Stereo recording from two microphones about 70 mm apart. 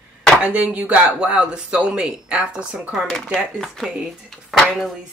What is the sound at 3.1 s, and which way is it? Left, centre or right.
Speech, centre.